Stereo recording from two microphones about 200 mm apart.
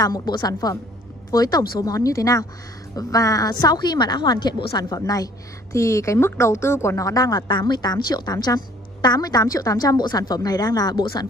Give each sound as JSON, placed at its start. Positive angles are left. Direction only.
{"t": 0.0, "sound": "a woman's voice", "side_deg": 20}